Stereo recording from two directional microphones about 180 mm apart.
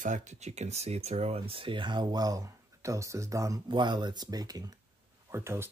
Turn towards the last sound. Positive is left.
turn(degrees=-15)  # may be behind; listen again after turning